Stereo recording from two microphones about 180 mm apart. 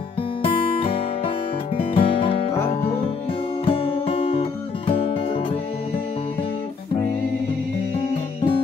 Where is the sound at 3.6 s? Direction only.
30° left (ahead or behind).